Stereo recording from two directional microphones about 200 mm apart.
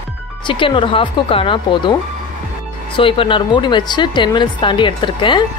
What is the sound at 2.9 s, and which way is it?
Speech, 25° left (ahead or behind).